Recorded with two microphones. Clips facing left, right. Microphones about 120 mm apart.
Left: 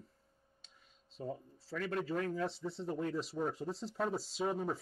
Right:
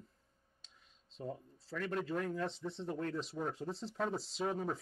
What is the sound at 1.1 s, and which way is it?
Speech, 5° left (ahead or behind).